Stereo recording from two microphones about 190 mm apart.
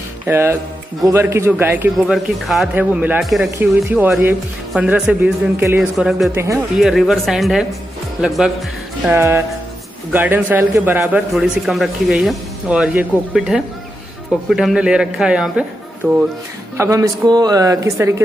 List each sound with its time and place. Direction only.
0.3 s speech: 10° right (ahead or behind)
2.1 s a man's voice: centre (ahead or behind)
6.3 s speech: 15° right (ahead or behind)
6.8 s a man's voice: centre (ahead or behind); by 18.1 s 15° right (ahead or behind)